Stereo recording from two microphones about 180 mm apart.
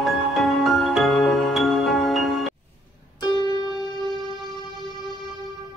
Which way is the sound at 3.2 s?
25° left (ahead or behind).